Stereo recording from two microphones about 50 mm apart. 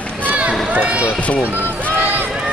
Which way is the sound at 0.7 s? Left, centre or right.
Right.